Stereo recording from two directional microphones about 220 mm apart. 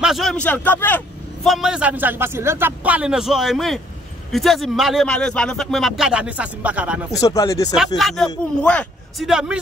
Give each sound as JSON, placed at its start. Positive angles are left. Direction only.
{"t": 0.0, "sound": "a man's voice", "side_deg": 0}
{"t": 7.2, "sound": "speech", "side_deg": 15}
{"t": 7.7, "sound": "a man's voice", "side_deg": 0}